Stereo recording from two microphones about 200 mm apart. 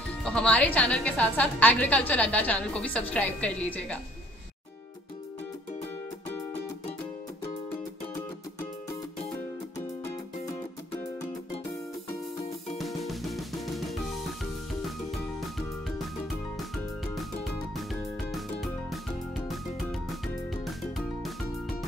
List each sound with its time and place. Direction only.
0.2 s a woman's voice: 5° left (ahead or behind)
10.9 s music: 25° left (ahead or behind)
12.7 s music: centre (ahead or behind)
16.7 s music: centre (ahead or behind)
18.3 s music: centre (ahead or behind)